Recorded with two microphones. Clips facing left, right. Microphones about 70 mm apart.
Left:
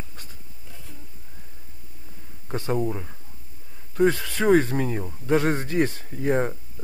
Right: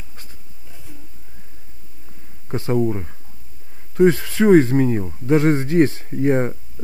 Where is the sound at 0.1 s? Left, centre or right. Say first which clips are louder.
Even; right.